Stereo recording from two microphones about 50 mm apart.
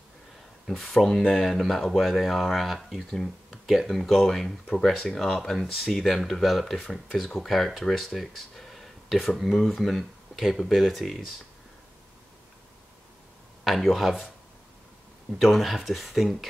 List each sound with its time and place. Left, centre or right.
0.7 s speech: centre
6.7 s speech: centre
7.3 s speech: centre
13.7 s speech: centre
15.3 s speech: centre